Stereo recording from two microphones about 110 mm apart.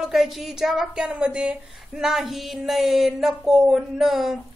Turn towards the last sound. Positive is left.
turn(degrees=0)  # may be behind; listen again after turning